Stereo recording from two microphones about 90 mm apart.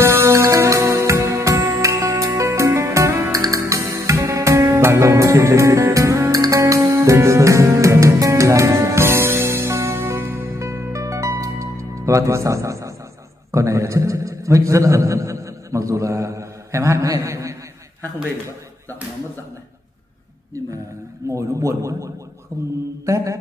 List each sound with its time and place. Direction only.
0.0 s music: 30° right (ahead or behind)
13.5 s a sound: 35° right (ahead or behind)
21.3 s speech: 35° right (ahead or behind)
23.0 s mantra: 35° right (ahead or behind)